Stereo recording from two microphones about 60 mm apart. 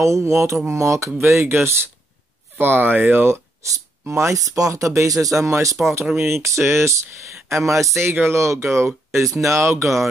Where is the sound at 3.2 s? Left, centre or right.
Right.